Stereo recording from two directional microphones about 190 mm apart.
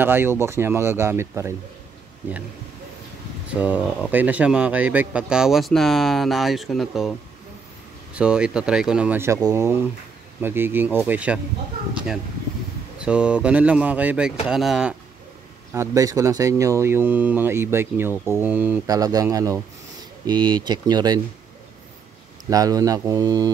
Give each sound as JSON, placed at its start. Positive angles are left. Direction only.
{"t": 0.0, "sound": "speech", "side_deg": -10}
{"t": 3.5, "sound": "speech", "side_deg": -5}
{"t": 13.0, "sound": "speech", "side_deg": -5}
{"t": 15.7, "sound": "speech", "side_deg": -15}
{"t": 22.5, "sound": "speech", "side_deg": -20}